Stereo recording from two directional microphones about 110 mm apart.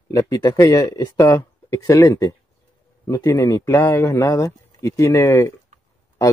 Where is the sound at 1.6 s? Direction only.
30° left (ahead or behind).